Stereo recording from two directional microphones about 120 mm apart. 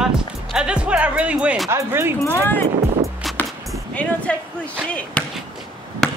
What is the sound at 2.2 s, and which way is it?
Speech, 20° left (ahead or behind).